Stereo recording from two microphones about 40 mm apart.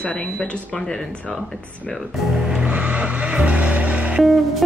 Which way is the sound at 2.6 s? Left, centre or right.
Right.